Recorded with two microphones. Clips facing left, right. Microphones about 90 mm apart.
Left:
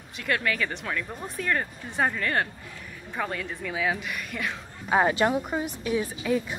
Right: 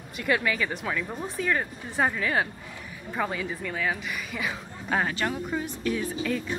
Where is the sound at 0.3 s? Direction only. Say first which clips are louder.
Right 1 dB; 5° right (ahead or behind).